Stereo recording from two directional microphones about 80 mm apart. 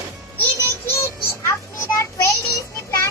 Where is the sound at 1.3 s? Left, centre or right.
Left.